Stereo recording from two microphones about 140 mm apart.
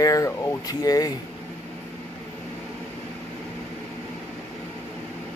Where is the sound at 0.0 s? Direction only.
25° left (ahead or behind).